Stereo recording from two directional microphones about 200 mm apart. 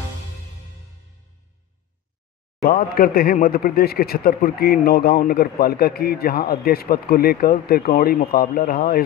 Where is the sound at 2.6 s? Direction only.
50° left (ahead or behind).